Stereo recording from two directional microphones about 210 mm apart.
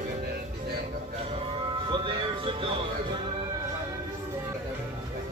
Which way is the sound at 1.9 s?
25° right (ahead or behind).